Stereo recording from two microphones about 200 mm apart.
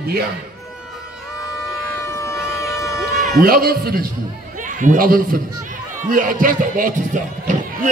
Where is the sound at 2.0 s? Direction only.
15° left (ahead or behind).